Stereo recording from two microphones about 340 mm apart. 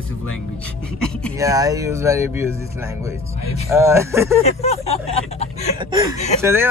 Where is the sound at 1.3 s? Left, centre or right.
Centre.